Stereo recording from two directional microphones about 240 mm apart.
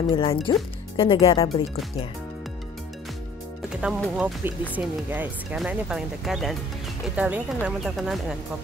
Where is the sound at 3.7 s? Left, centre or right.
Centre.